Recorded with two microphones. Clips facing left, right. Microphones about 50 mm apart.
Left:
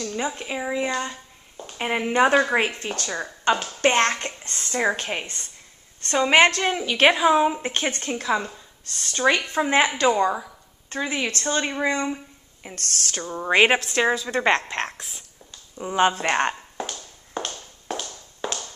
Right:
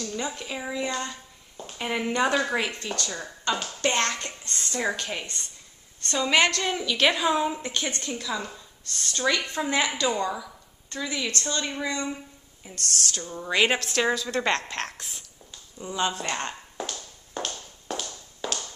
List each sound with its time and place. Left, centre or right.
0.0 s a woman's voice: centre
7.2 s speech: left
7.7 s a woman's voice: left
12.6 s a woman's voice: left
13.7 s speech: centre
15.0 s speech: centre
15.8 s a woman's voice: left
17.5 s tap: centre